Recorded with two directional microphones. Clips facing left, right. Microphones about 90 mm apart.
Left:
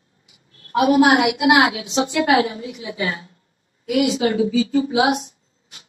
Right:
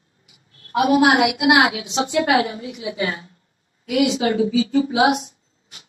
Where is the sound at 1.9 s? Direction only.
35° right (ahead or behind).